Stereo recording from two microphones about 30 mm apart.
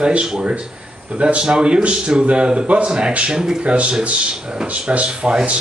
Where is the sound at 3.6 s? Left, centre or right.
Right.